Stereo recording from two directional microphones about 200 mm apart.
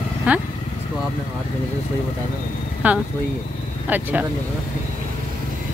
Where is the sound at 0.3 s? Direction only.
10° right (ahead or behind).